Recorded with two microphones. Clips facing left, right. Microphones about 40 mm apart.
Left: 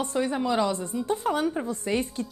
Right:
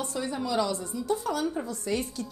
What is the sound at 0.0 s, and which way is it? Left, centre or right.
A woman's voice, left.